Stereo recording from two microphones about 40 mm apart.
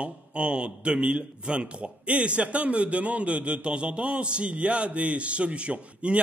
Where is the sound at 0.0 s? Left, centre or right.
Right.